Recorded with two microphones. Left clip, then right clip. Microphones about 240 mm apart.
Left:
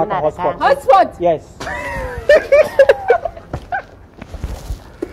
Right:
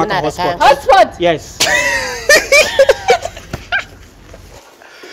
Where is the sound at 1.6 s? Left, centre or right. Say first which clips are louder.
Right 11 dB; right.